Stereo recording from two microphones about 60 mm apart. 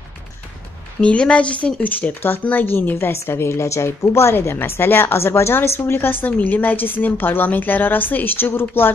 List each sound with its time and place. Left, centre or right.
1.0 s speech: centre; by 8.9 s left